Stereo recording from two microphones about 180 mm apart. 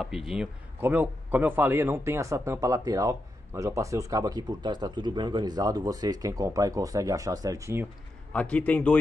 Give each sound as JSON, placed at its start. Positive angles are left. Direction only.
{"t": 0.0, "sound": "a man's voice", "side_deg": 0}
{"t": 8.3, "sound": "a man's voice", "side_deg": 5}